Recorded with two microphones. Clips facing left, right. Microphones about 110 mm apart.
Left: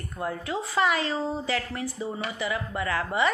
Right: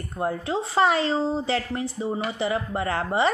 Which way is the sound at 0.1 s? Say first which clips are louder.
Right 5 dB; 30° right (ahead or behind).